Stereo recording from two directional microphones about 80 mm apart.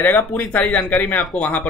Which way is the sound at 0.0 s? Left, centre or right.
Left.